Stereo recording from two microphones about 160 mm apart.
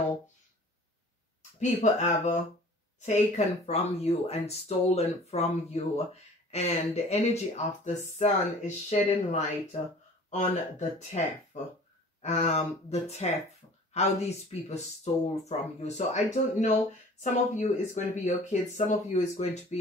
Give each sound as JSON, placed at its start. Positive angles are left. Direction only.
{"t": 1.6, "sound": "speech", "side_deg": 45}
{"t": 13.6, "sound": "a sound", "side_deg": 30}
{"t": 13.9, "sound": "speech", "side_deg": 40}